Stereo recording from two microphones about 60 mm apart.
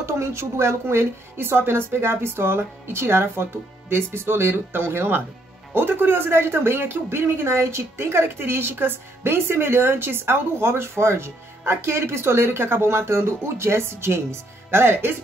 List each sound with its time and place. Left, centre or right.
0.0 s speech: right